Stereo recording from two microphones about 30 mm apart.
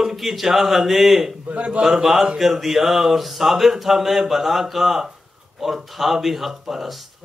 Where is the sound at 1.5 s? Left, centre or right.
Right.